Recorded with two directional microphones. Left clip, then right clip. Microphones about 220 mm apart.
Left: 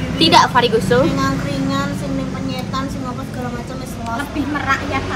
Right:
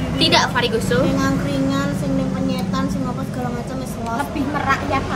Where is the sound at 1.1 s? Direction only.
10° right (ahead or behind).